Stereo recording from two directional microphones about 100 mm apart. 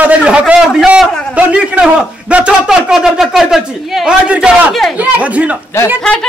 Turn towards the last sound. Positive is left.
turn(degrees=5)  # may be behind; listen again after turning